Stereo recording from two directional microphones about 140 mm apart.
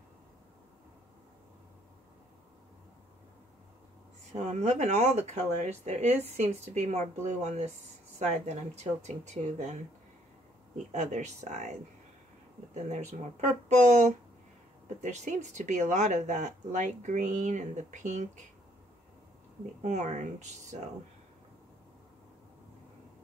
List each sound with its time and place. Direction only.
4.3 s speech: 50° right (ahead or behind)
10.9 s speech: 55° right (ahead or behind)
12.7 s speech: 55° right (ahead or behind)
19.8 s speech: 55° right (ahead or behind)